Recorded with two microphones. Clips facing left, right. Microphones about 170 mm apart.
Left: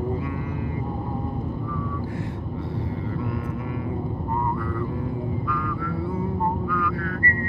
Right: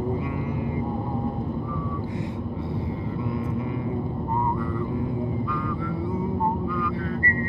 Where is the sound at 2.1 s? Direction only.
15° right (ahead or behind).